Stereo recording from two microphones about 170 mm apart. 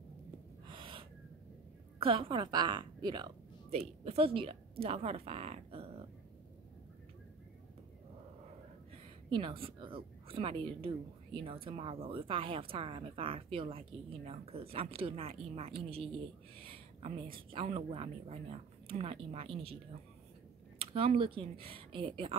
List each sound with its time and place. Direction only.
0.7 s gasp: 30° right (ahead or behind)
2.0 s a woman's voice: 30° right (ahead or behind)
3.7 s speech: 35° right (ahead or behind)
9.3 s speech: 30° right (ahead or behind)
20.8 s speech: 35° right (ahead or behind)